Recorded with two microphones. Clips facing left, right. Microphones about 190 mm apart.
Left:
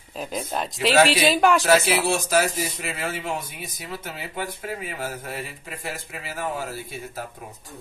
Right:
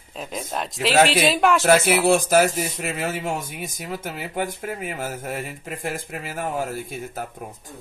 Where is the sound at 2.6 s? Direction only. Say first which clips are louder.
Right 3 dB; 40° right (ahead or behind).